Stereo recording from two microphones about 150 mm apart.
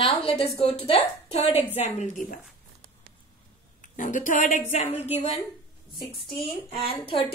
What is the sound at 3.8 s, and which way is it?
A woman's voice, 60° left (ahead or behind).